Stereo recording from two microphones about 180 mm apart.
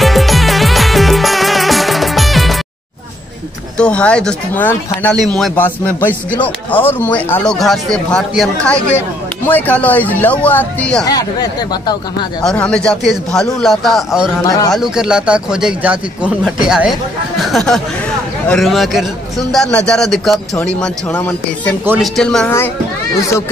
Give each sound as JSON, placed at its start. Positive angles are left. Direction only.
{"t": 0.0, "sound": "music", "side_deg": 0}
{"t": 3.7, "sound": "a man's voice", "side_deg": 5}
{"t": 11.1, "sound": "speech", "side_deg": 20}
{"t": 12.4, "sound": "a man's voice", "side_deg": 5}